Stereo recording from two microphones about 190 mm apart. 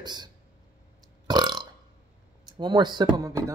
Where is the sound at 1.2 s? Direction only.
20° right (ahead or behind).